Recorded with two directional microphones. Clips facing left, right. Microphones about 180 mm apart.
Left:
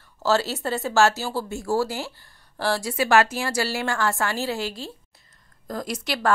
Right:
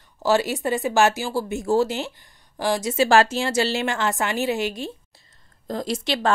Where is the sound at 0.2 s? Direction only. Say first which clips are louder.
Right 2 dB; 15° right (ahead or behind).